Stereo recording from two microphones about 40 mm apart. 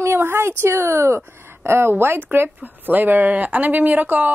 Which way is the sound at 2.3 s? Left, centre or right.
Right.